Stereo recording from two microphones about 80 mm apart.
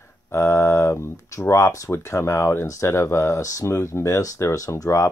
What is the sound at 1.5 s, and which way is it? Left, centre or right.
Speech, left.